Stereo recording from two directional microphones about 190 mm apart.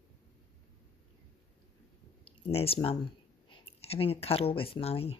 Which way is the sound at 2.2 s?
30° left (ahead or behind).